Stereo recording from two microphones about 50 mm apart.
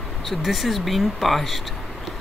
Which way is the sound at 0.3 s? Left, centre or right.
Centre.